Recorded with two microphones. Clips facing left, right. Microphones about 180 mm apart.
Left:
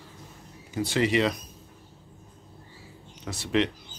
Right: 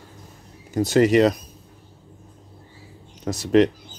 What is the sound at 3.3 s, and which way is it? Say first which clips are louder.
Speech: right 9 dB; 40° right (ahead or behind).